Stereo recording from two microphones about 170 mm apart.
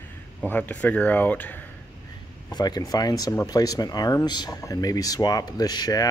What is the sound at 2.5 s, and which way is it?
Speech, 25° left (ahead or behind).